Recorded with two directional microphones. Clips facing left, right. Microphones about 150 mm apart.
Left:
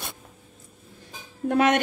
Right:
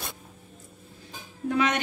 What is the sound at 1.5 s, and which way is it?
Speech, 50° left (ahead or behind).